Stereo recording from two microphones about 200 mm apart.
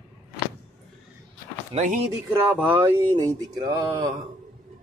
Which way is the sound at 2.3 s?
10° right (ahead or behind).